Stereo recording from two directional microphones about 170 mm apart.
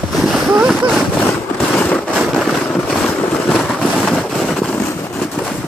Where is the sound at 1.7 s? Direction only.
10° left (ahead or behind).